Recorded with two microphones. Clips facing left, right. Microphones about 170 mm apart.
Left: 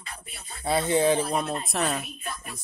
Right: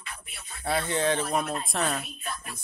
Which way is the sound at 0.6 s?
15° left (ahead or behind).